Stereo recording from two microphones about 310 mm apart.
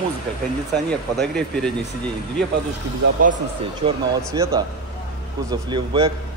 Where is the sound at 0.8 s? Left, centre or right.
Centre.